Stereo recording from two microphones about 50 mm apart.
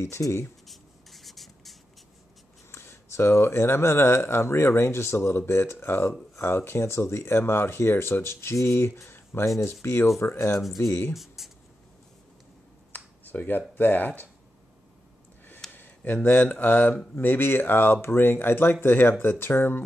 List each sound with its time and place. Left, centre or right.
0.2 s speech: left
0.7 s rub: centre
2.7 s speech: left
5.5 s speech: left
11.1 s writing: centre
12.9 s speech: left
15.7 s speech: left